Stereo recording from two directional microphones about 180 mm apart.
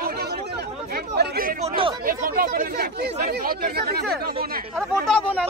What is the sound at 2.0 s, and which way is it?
Speech, 50° right (ahead or behind).